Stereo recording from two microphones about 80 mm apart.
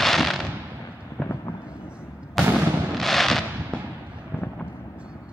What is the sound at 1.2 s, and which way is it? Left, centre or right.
Fireworks, centre.